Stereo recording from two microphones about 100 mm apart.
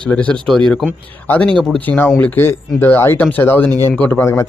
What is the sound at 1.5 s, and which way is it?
Speech, 5° left (ahead or behind).